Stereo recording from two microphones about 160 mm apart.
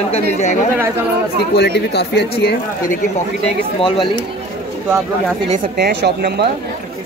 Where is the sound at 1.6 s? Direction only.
90° left.